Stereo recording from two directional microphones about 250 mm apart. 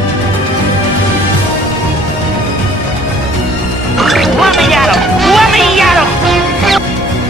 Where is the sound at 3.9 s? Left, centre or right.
Centre.